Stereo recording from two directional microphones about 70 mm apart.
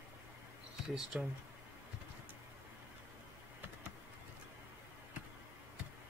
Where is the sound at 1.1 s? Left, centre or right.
Centre.